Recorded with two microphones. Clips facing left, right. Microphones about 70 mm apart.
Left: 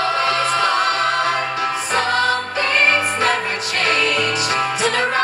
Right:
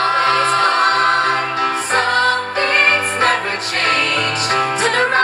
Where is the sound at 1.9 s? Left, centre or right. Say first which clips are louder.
Right 2 dB; right.